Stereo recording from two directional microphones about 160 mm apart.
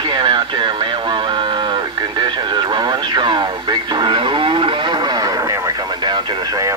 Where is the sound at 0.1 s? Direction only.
30° right (ahead or behind).